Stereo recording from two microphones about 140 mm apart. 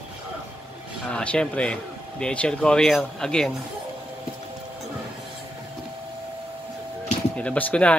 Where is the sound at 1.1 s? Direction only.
5° left (ahead or behind).